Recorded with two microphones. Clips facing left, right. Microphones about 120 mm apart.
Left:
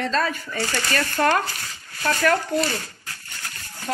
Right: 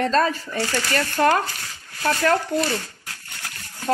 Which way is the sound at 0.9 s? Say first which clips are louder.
Right 2 dB; 15° right (ahead or behind).